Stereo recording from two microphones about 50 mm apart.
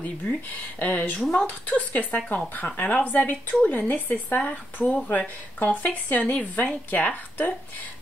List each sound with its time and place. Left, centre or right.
0.7 s speech: left